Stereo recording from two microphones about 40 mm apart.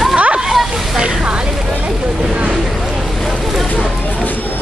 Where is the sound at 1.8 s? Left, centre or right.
Right.